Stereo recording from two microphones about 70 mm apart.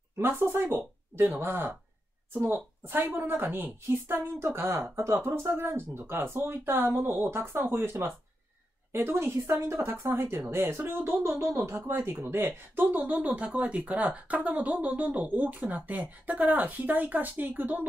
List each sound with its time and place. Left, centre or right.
0.2 s speech: right
4.4 s speech: right